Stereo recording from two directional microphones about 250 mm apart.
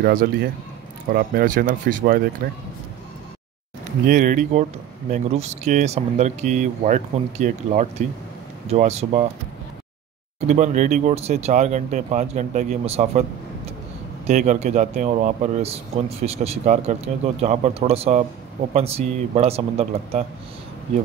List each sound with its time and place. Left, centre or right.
0.0 s speech: right
4.1 s speech: right
10.4 s speech: right
14.2 s speech: right